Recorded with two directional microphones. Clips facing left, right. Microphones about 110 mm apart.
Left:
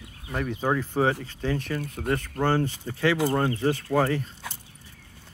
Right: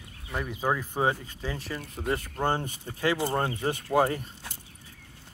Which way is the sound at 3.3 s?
20° right (ahead or behind).